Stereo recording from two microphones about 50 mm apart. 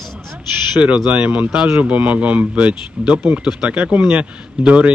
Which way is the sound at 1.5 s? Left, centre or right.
Centre.